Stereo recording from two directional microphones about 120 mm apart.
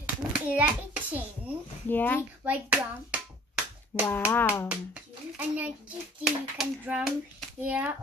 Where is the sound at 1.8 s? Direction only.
15° left (ahead or behind).